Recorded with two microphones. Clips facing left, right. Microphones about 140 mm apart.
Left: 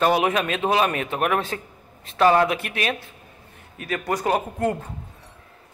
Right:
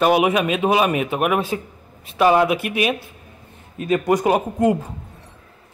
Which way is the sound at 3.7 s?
20° right (ahead or behind).